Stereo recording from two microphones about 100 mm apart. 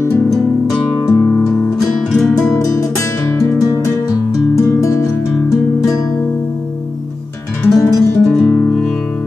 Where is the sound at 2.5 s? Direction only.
35° left (ahead or behind).